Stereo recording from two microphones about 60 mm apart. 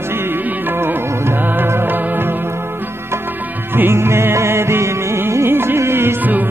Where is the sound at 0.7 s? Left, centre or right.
Right.